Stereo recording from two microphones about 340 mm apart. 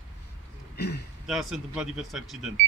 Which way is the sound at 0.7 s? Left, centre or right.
Left.